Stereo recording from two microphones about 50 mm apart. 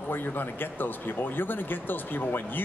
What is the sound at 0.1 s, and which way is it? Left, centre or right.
Speech, left.